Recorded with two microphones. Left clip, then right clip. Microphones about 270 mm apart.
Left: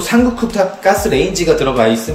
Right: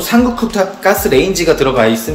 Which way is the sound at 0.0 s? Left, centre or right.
Centre.